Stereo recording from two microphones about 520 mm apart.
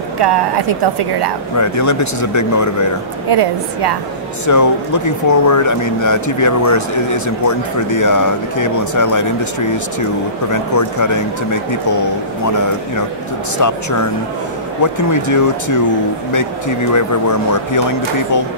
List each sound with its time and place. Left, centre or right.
1.6 s speech: left
3.3 s a woman's voice: right
4.5 s speech: left
10.5 s speech: left
13.6 s speech: left